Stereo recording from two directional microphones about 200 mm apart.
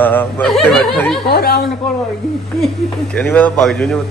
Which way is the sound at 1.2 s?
50° left (ahead or behind).